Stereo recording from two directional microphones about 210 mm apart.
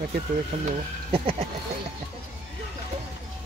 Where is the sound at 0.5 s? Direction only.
30° right (ahead or behind).